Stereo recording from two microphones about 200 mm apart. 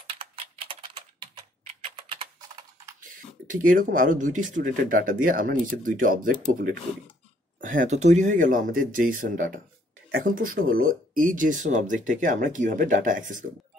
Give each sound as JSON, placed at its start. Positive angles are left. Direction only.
{"t": 0.0, "sound": "computer keyboard", "side_deg": -25}
{"t": 1.9, "sound": "typing", "side_deg": -25}
{"t": 3.4, "sound": "speech", "side_deg": -40}
{"t": 7.6, "sound": "speech", "side_deg": -40}